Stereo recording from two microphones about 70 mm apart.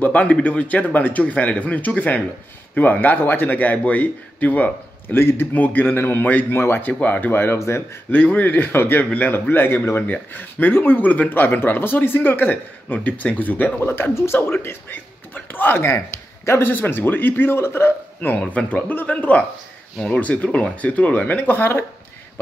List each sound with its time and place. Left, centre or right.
0.0 s speech: centre
5.9 s speech: left
6.9 s speech: left
7.5 s speech: left
8.1 s speech: left